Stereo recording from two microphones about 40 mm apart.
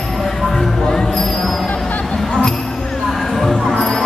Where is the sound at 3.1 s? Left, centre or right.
Centre.